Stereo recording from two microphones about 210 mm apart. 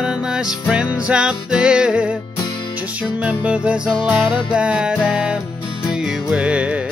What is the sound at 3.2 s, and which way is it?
Music, 5° right (ahead or behind).